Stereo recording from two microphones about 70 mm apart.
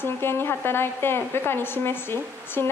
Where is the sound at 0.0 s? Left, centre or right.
Left.